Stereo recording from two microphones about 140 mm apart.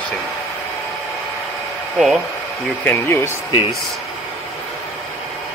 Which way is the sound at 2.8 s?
15° left (ahead or behind).